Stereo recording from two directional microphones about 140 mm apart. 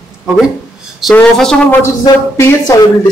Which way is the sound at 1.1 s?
5° left (ahead or behind).